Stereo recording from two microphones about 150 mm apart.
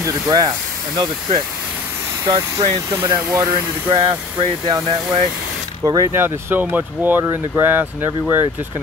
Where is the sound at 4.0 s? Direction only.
35° right (ahead or behind).